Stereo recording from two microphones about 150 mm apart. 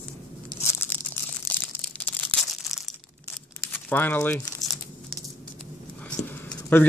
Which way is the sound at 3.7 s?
10° left (ahead or behind).